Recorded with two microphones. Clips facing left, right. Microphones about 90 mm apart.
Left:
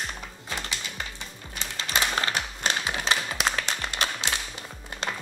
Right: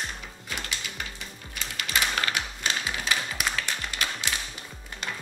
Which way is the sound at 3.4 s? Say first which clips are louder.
Left 2 dB; 30° left (ahead or behind).